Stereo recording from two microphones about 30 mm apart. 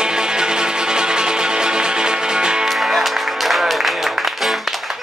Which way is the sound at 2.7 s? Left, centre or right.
Centre.